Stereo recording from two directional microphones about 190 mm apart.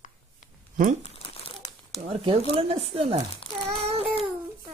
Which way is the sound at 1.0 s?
30° left (ahead or behind).